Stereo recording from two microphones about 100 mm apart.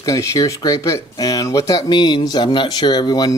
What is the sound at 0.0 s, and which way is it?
Speech, 35° left (ahead or behind).